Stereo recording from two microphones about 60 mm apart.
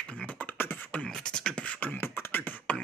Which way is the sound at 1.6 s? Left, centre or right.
Left.